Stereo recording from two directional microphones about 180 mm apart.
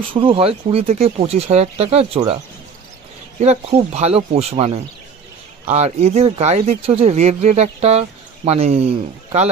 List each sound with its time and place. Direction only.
0.1 s speech: 30° right (ahead or behind)